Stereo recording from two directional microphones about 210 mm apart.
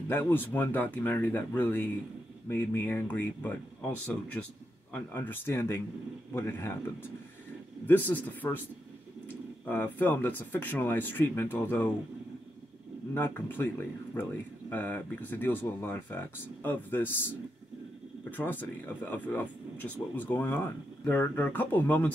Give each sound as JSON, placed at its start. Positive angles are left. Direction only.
{"t": 0.1, "sound": "speech", "side_deg": 10}
{"t": 9.7, "sound": "speech", "side_deg": 10}
{"t": 13.1, "sound": "speech", "side_deg": 10}